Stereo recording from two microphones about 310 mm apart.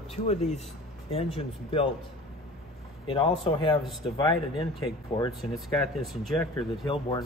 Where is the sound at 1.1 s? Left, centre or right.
Centre.